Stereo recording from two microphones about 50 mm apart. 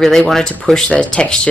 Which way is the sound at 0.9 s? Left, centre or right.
Left.